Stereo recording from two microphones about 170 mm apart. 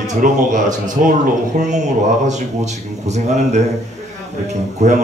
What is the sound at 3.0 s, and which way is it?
Speech, 40° right (ahead or behind).